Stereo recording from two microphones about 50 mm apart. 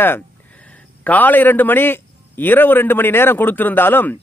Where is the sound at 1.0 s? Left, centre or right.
Left.